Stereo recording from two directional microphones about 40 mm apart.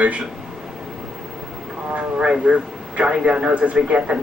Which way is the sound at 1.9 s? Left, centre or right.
Right.